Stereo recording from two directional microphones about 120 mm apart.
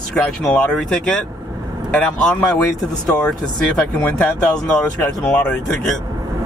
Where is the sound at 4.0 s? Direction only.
15° left (ahead or behind).